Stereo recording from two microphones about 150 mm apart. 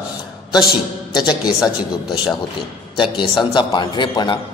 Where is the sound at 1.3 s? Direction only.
25° left (ahead or behind).